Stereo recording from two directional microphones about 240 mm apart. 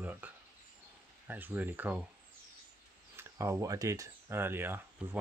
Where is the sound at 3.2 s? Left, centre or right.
Centre.